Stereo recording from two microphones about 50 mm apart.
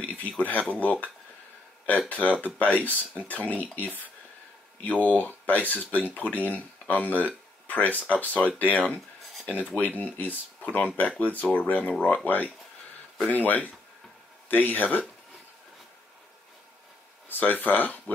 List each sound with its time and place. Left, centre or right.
0.4 s speech: left
13.3 s speech: left
17.3 s speech: left